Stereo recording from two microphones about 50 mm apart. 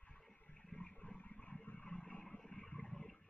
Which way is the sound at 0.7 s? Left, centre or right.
Left.